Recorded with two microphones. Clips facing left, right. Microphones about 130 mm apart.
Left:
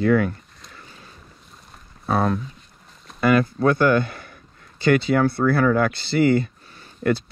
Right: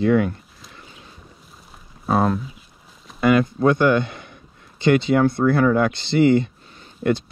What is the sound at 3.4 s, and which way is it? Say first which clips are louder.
Speech: right 1 dB; 20° right (ahead or behind).